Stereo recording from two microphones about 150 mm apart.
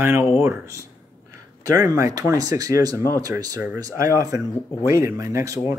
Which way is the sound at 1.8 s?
25° right (ahead or behind).